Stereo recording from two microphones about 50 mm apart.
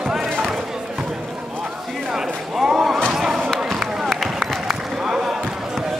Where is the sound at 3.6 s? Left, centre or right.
Centre.